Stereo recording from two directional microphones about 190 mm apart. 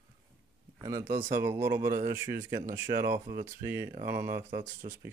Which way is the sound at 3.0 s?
15° right (ahead or behind).